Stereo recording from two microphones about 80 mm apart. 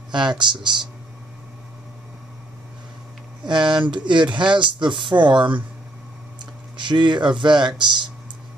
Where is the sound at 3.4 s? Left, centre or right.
Right.